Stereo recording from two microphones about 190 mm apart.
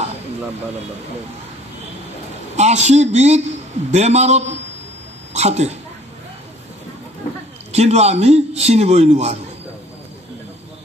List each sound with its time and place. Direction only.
2.5 s a man's voice: 35° right (ahead or behind)
7.7 s a man's voice: 35° right (ahead or behind)